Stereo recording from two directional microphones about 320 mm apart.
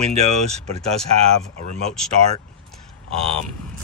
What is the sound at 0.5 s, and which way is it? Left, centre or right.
Speech, centre.